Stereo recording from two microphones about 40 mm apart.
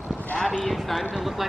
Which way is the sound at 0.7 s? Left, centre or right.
Centre.